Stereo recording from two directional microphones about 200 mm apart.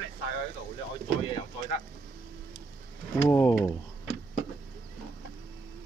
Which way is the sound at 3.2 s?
15° left (ahead or behind).